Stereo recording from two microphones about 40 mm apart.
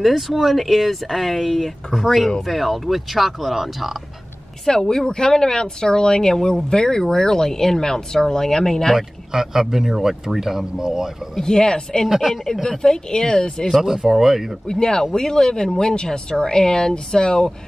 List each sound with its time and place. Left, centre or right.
0.0 s speech: centre
4.6 s speech: centre
8.9 s speech: centre
11.4 s speech: centre
12.1 s speech: centre
12.8 s speech: centre
13.7 s speech: centre
14.7 s speech: centre